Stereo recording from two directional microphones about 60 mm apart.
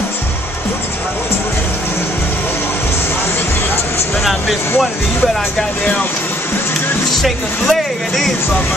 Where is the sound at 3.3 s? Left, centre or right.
Left.